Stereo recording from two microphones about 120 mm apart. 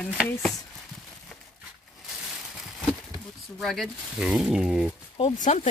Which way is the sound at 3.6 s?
Centre (ahead or behind).